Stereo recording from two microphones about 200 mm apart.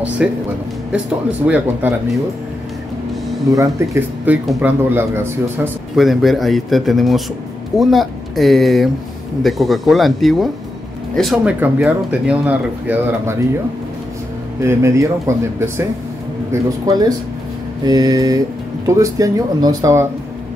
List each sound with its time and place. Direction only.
0.2 s speech: 5° right (ahead or behind)
3.4 s speech: 15° right (ahead or behind)
5.9 s speech: centre (ahead or behind)
14.6 s speech: 15° right (ahead or behind)
17.8 s mantra: 20° right (ahead or behind)
18.9 s speech: 15° right (ahead or behind)